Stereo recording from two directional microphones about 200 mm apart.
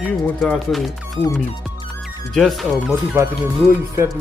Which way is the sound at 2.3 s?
Centre (ahead or behind).